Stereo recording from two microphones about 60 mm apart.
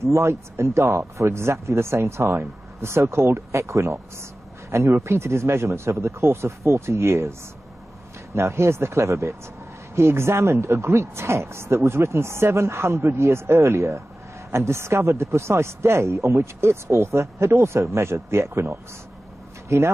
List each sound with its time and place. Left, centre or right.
0.0 s speech: right
8.4 s speech: right